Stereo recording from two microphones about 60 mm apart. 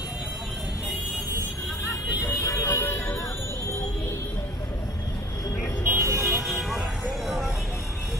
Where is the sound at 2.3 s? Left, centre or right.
Left.